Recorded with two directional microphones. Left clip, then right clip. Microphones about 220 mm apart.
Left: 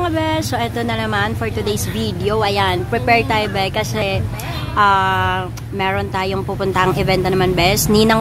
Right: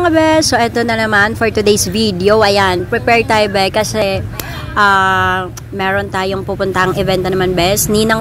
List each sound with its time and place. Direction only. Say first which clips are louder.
0.0 s a woman's voice: right 9 dB; 25° right (ahead or behind)